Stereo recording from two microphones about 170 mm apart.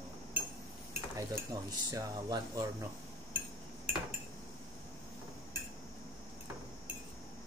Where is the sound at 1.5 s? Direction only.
20° right (ahead or behind).